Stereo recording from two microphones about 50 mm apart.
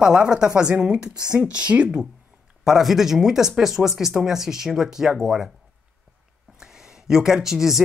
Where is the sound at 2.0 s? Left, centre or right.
Centre.